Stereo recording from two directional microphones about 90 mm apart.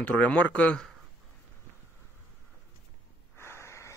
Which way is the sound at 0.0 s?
15° left (ahead or behind).